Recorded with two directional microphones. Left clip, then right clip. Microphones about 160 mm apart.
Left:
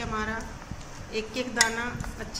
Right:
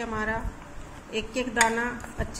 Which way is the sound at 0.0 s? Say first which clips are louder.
Right 2 dB; 45° right (ahead or behind).